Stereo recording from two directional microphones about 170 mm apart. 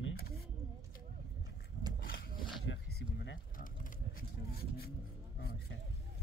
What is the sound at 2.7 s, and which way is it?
Speech, 85° left.